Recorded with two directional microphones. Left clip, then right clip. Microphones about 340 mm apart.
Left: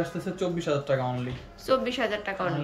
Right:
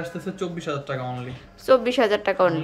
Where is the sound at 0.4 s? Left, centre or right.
Centre.